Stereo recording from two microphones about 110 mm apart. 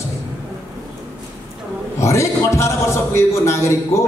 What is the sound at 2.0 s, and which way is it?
A man's voice, 25° left (ahead or behind).